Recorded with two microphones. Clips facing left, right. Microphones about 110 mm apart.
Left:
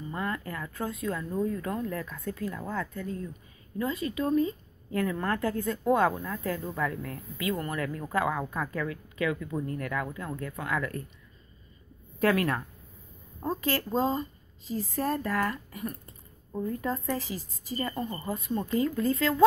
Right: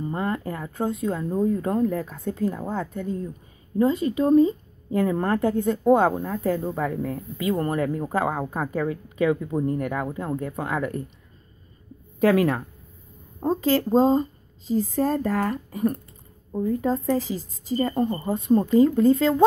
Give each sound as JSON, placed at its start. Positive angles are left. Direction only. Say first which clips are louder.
{"t": 0.1, "sound": "a woman's voice", "louder": "right 3 dB", "side_deg": -30}
{"t": 12.2, "sound": "speech", "louder": "right 6 dB", "side_deg": -25}